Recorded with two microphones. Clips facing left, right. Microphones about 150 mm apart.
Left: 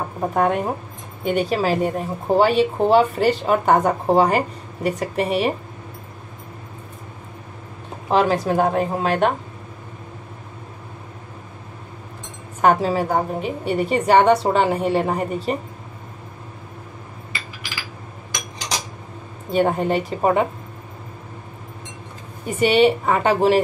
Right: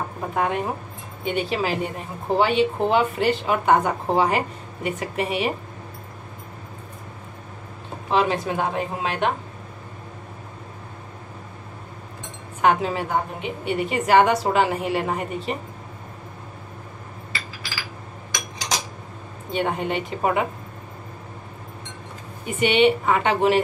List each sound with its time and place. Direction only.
0.3 s speech: 45° left (ahead or behind)
8.1 s speech: 40° left (ahead or behind)
12.6 s speech: 40° left (ahead or behind)
19.5 s speech: 40° left (ahead or behind)
22.5 s speech: 40° left (ahead or behind)